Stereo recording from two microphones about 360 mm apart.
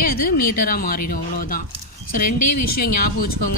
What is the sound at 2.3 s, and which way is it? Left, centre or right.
Speech, left.